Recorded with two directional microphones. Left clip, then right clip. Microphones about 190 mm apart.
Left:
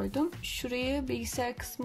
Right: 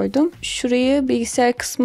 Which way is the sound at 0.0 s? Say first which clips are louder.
Right 13 dB; 35° right (ahead or behind).